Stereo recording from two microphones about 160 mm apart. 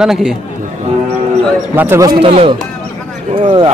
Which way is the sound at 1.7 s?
15° right (ahead or behind).